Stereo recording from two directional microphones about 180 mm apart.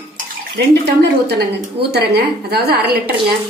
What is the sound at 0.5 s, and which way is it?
A woman's voice, 70° right (ahead or behind).